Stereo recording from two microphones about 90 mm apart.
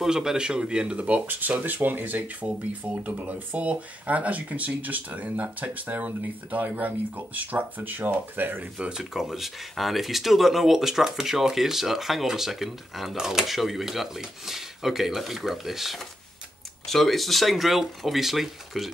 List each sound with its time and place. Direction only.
0.0 s speech: 5° right (ahead or behind)
8.7 s speech: 5° right (ahead or behind)